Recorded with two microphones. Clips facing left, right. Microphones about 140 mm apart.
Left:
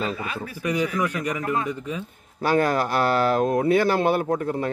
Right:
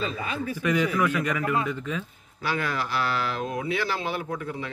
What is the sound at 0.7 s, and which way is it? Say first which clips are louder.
Speech: even; 15° left (ahead or behind).